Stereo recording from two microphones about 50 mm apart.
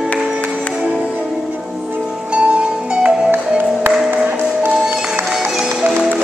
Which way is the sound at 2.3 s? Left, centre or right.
Right.